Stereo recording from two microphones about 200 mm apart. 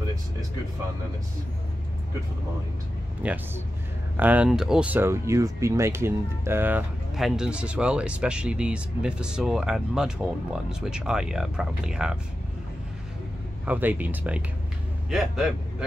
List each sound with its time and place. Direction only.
3.2 s speech: 5° right (ahead or behind)
13.7 s speech: 10° right (ahead or behind)